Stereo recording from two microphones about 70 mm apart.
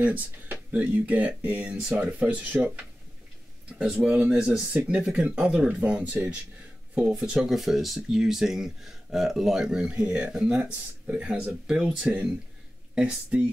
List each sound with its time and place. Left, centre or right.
0.0 s speech: right